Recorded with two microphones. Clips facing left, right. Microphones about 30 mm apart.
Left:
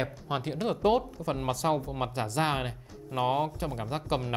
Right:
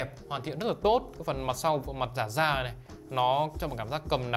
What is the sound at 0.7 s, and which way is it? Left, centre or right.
Speech, centre.